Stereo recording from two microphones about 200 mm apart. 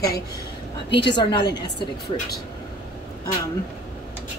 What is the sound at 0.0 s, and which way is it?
Speech, 20° left (ahead or behind).